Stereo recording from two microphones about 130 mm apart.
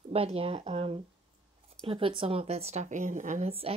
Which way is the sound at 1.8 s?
45° right (ahead or behind).